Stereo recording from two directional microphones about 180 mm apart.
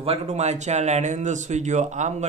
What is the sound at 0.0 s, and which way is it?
Speech, 35° right (ahead or behind).